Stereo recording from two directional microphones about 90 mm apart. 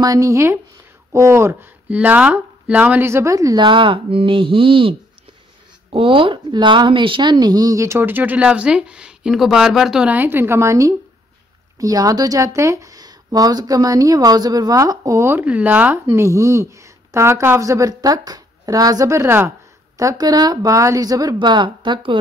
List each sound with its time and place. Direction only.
0.0 s speech: 40° right (ahead or behind)
3.5 s speech: 65° right (ahead or behind)
5.9 s speech: 90° right; by 8.0 s 35° right (ahead or behind)
8.0 s speech: 20° right (ahead or behind)
10.1 s speech: 25° right (ahead or behind); by 15.2 s 40° right (ahead or behind)
15.2 s speech: 20° right (ahead or behind)
20.0 s speech: 45° right (ahead or behind); by 22.1 s 60° right (ahead or behind)